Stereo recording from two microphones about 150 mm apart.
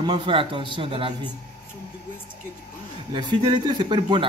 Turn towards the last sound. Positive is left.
turn(degrees=-30)  # may be behind; listen again after turning